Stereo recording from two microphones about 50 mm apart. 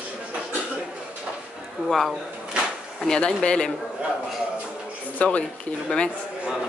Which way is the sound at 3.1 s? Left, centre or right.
Centre.